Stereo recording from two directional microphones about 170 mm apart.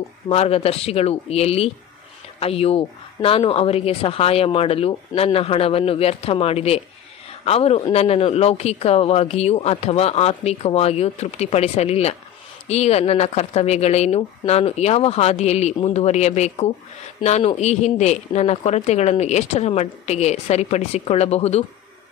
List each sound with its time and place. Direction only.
0.3 s speech: 35° left (ahead or behind)